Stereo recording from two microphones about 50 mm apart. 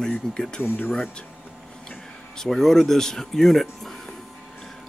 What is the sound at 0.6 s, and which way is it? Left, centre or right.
Speech, left.